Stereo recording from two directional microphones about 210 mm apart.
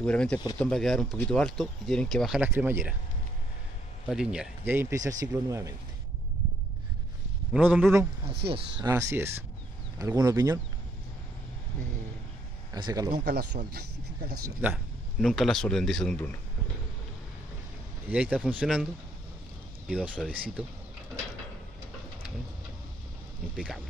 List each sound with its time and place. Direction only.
0.0 s speech: 5° left (ahead or behind); by 2.9 s 10° right (ahead or behind)
4.1 s speech: 5° right (ahead or behind)
7.5 s speech: 5° right (ahead or behind)
12.7 s speech: 20° right (ahead or behind)
13.1 s speech: 50° right (ahead or behind)
14.6 s speech: 5° right (ahead or behind)
18.1 s speech: 5° right (ahead or behind)
19.9 s speech: centre (ahead or behind)
23.5 s speech: centre (ahead or behind)